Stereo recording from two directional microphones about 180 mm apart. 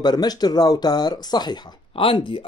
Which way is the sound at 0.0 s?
25° left (ahead or behind).